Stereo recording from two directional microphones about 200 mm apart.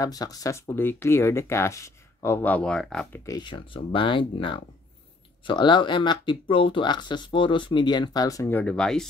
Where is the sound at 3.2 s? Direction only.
20° left (ahead or behind).